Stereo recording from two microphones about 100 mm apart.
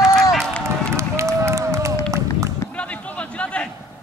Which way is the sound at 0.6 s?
30° right (ahead or behind).